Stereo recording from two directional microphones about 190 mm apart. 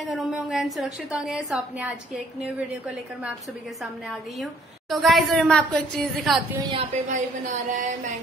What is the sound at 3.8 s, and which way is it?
A woman's voice, centre (ahead or behind).